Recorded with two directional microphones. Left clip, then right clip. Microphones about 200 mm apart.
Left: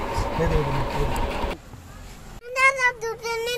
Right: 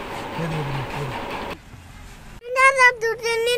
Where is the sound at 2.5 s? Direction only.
30° right (ahead or behind).